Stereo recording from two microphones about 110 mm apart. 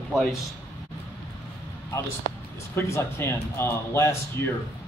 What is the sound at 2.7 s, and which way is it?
A man's voice, 25° left (ahead or behind).